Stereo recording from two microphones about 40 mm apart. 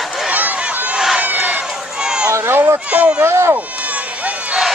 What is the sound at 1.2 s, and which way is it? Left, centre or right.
Run, right.